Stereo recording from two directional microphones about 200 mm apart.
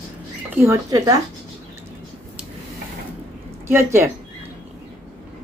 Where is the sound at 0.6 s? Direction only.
15° right (ahead or behind).